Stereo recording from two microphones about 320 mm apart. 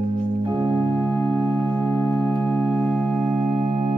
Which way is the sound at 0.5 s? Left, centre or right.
Centre.